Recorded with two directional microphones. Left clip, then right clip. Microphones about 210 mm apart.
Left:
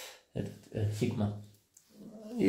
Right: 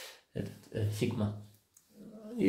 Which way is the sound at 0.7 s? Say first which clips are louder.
Right 1 dB; 15° right (ahead or behind).